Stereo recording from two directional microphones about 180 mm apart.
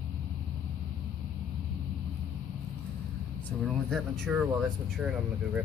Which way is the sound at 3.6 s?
Centre (ahead or behind).